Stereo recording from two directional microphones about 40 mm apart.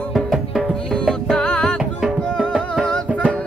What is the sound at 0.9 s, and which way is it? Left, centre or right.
Music, centre.